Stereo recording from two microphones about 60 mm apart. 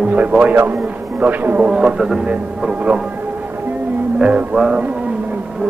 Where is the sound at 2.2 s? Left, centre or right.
Centre.